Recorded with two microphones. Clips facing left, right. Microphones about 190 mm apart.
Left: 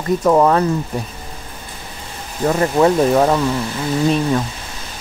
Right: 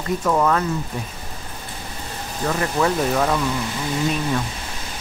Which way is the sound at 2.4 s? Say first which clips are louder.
Left 7 dB; 30° left (ahead or behind).